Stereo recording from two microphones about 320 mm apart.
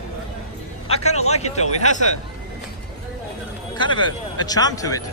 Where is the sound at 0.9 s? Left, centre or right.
Left.